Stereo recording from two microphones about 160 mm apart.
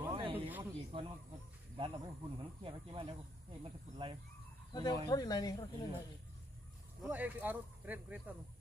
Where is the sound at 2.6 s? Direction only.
35° right (ahead or behind).